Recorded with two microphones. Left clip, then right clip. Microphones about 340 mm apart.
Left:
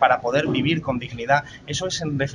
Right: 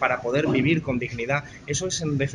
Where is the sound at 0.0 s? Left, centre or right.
Left.